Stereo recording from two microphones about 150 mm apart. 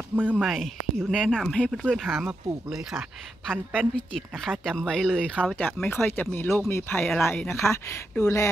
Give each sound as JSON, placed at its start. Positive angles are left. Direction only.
{"t": 0.1, "sound": "a woman's voice", "side_deg": -10}